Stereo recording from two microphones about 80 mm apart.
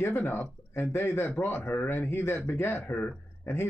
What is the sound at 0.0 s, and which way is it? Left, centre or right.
A man's voice, left.